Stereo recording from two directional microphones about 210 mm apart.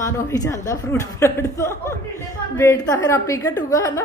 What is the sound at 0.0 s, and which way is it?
Speech, 15° left (ahead or behind).